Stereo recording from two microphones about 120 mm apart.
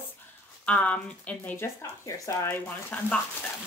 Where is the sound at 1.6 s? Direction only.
25° left (ahead or behind).